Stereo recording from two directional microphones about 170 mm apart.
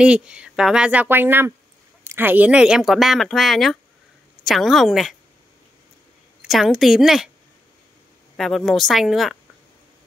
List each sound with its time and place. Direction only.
0.0 s speech: 5° right (ahead or behind)
6.4 s speech: centre (ahead or behind)
8.4 s speech: centre (ahead or behind)